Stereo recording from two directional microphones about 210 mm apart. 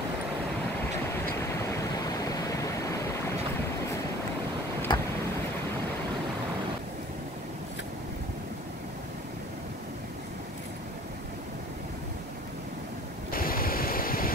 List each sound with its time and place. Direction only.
1.4 s stream: 10° left (ahead or behind)
4.9 s vehicle: 20° left (ahead or behind)
13.3 s a sound: 45° left (ahead or behind)